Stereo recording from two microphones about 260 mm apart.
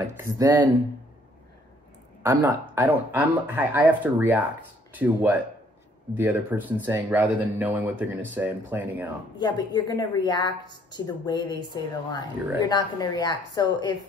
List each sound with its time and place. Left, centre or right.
0.2 s speech: centre
2.2 s speech: centre
9.4 s a woman's voice: centre